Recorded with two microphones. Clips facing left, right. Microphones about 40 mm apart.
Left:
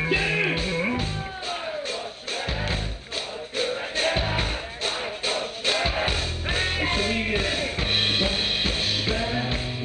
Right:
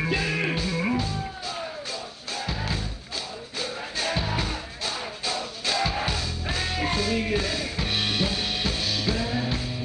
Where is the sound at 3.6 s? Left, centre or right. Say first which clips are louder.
Left 5 dB; left.